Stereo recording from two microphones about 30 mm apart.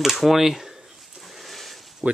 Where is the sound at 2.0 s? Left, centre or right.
Right.